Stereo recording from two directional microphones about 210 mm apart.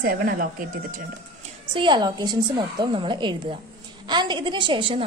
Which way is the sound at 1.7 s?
20° right (ahead or behind).